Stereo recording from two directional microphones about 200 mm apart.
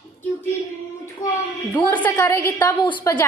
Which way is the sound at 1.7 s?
10° left (ahead or behind).